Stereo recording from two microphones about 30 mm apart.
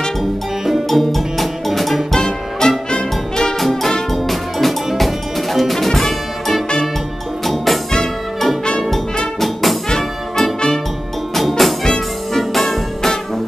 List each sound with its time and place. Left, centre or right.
0.8 s music: centre
2.1 s music: centre
3.5 s brass instrument: centre
4.1 s music: centre
5.8 s music: centre
9.4 s brass instrument: centre
11.3 s music: centre